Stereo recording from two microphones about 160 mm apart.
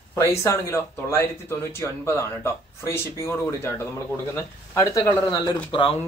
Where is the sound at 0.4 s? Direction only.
15° left (ahead or behind).